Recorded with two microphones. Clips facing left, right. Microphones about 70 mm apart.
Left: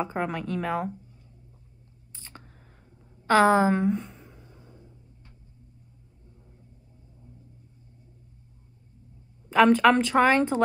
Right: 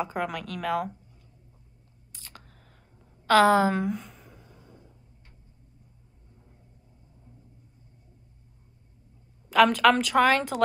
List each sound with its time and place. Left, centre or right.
0.0 s speech: left
2.1 s a sound: left
3.3 s speech: left
3.9 s speech: centre
4.2 s a sound: centre
9.5 s speech: left